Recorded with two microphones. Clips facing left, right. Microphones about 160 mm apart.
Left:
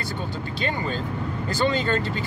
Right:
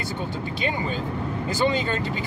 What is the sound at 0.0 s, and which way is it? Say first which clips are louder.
Speech: right 1 dB; 20° right (ahead or behind).